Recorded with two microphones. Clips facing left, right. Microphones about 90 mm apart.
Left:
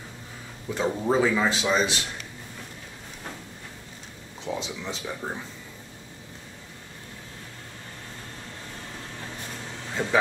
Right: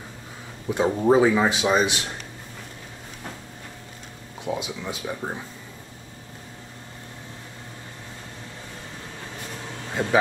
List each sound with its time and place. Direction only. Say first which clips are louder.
0.7 s a man's voice: right 6 dB; 15° right (ahead or behind)
4.5 s a man's voice: right 3 dB; 10° right (ahead or behind)